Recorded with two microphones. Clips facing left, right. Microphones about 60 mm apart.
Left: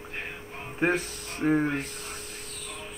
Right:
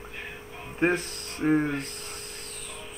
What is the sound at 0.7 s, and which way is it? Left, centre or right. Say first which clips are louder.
Speech: right 1 dB; centre.